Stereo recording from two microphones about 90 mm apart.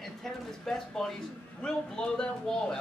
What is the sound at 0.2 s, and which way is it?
A man's voice, 5° left (ahead or behind).